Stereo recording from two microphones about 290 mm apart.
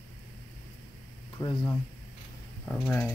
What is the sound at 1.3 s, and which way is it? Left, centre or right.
Speech, centre.